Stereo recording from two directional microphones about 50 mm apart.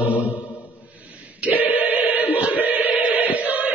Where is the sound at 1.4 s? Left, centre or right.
Right.